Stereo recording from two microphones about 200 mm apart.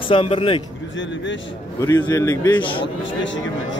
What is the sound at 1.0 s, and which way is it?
Speech, 65° left (ahead or behind).